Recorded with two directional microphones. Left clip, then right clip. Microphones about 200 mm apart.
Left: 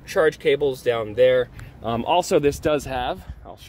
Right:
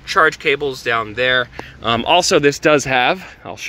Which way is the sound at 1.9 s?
5° right (ahead or behind).